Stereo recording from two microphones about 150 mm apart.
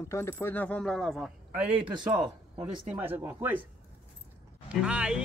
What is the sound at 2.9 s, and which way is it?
Speech, 10° right (ahead or behind).